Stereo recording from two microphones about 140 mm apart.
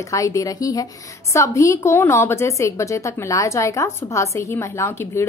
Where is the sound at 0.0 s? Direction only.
25° left (ahead or behind).